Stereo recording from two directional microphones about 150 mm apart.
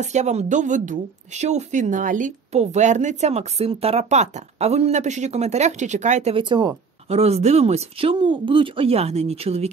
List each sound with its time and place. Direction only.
0.0 s speech: 50° right (ahead or behind)
6.3 s speech: 30° right (ahead or behind)
7.1 s speech: 45° right (ahead or behind)